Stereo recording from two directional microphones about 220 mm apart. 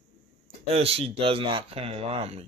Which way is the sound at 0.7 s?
25° right (ahead or behind).